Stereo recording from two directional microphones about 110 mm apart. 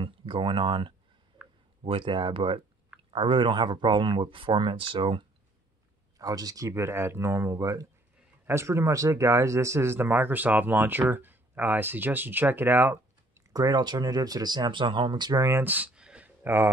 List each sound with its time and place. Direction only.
0.0 s speech: 50° right (ahead or behind)
2.0 s speech: 45° right (ahead or behind)
6.1 s speech: 35° right (ahead or behind); by 13.0 s 20° right (ahead or behind)
13.5 s speech: 35° right (ahead or behind)
15.4 s speech: 20° right (ahead or behind)
16.4 s speech: 20° right (ahead or behind)